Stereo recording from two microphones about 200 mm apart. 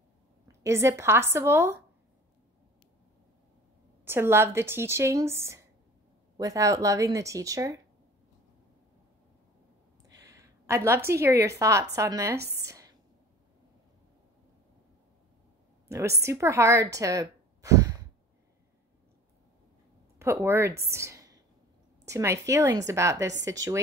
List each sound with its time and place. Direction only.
0.5 s a woman's voice: 15° right (ahead or behind)
4.0 s a woman's voice: 10° right (ahead or behind)
10.0 s a woman's voice: 15° right (ahead or behind)
12.5 s a sound: 15° right (ahead or behind)
15.9 s a woman's voice: 15° right (ahead or behind)
20.2 s a woman's voice: 15° right (ahead or behind)